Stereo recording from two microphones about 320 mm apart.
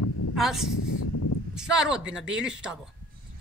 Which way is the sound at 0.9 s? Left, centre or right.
Left.